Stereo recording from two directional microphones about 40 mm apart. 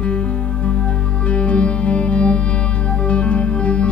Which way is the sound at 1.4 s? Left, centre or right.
Left.